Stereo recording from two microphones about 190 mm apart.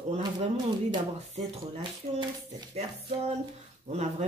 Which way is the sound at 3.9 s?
35° right (ahead or behind).